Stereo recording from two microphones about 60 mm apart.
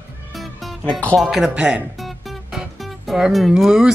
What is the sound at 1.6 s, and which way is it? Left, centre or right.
Speech, centre.